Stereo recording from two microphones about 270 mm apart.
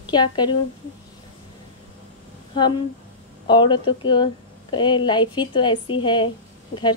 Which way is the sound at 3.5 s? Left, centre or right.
Centre.